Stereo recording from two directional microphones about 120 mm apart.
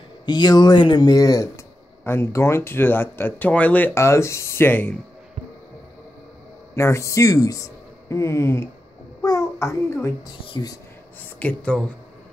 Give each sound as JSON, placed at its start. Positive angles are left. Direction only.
{"t": 0.2, "sound": "speech", "side_deg": 35}
{"t": 6.7, "sound": "speech", "side_deg": 25}
{"t": 9.2, "sound": "child singing", "side_deg": 30}
{"t": 11.3, "sound": "speech", "side_deg": 10}